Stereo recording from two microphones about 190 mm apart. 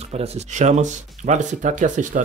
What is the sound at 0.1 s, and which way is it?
Speech, 35° right (ahead or behind).